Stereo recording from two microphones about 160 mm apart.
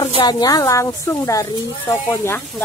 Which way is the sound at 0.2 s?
25° left (ahead or behind).